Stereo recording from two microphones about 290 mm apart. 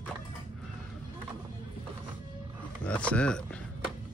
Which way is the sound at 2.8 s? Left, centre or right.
Centre.